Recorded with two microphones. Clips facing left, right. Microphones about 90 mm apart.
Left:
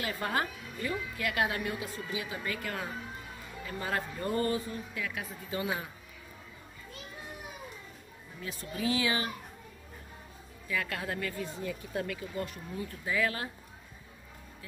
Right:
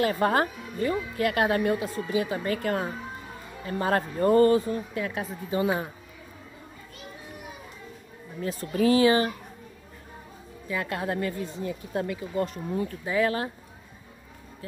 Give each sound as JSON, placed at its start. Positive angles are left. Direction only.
{"t": 0.0, "sound": "speech", "side_deg": -45}
{"t": 8.4, "sound": "speech", "side_deg": -40}
{"t": 10.7, "sound": "speech", "side_deg": -30}
{"t": 13.0, "sound": "speech", "side_deg": -30}